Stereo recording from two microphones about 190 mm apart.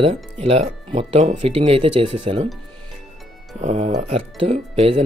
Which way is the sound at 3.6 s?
35° right (ahead or behind).